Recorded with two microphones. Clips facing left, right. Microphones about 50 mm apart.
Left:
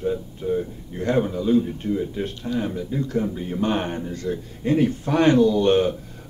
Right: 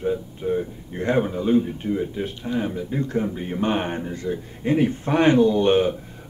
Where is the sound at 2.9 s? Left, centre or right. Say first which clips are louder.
Even; right.